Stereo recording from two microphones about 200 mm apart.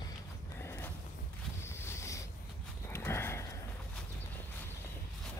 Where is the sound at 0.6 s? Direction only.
10° left (ahead or behind).